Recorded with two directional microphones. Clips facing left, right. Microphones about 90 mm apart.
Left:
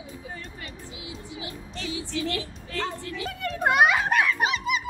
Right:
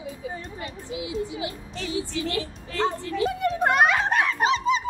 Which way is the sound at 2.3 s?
30° right (ahead or behind).